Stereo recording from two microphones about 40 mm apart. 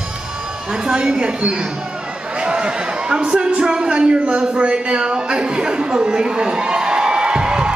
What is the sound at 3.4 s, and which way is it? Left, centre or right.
Speech, right.